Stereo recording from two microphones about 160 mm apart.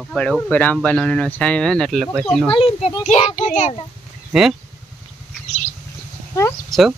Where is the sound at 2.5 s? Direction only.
35° left (ahead or behind).